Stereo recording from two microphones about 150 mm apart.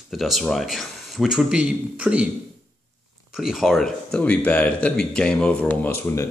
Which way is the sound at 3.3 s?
Centre (ahead or behind).